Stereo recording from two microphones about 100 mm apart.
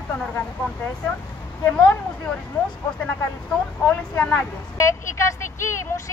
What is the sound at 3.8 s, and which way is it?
Speech, 15° left (ahead or behind).